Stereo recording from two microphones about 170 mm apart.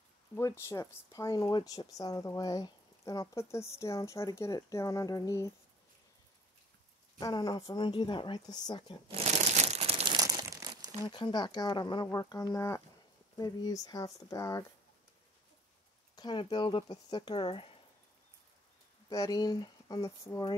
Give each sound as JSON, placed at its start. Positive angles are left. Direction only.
{"t": 0.4, "sound": "speech", "side_deg": 15}
{"t": 7.2, "sound": "speech", "side_deg": 20}
{"t": 9.1, "sound": "crumpling", "side_deg": -40}
{"t": 11.1, "sound": "speech", "side_deg": 25}
{"t": 16.2, "sound": "speech", "side_deg": 25}
{"t": 19.0, "sound": "speech", "side_deg": 20}